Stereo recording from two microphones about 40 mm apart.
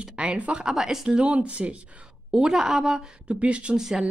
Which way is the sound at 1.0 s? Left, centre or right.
Right.